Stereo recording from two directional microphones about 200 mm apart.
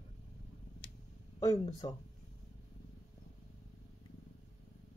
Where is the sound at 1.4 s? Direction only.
20° left (ahead or behind).